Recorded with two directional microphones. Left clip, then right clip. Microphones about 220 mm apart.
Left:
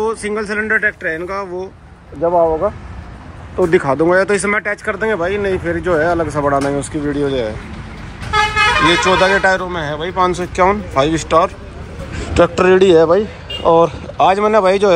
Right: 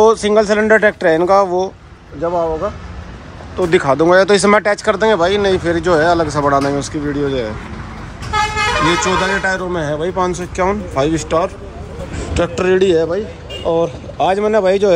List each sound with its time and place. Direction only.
0.0 s speech: 15° right (ahead or behind)
2.2 s speech: centre (ahead or behind)
8.3 s vehicle: 40° right (ahead or behind)
9.2 s speech: 5° right (ahead or behind)